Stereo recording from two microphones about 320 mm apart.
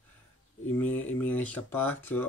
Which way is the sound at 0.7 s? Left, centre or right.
Centre.